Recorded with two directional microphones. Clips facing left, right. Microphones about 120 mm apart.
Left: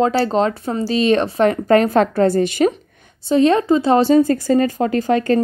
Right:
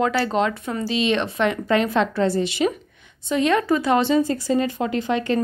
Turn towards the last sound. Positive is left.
turn(degrees=45)  # may be behind; listen again after turning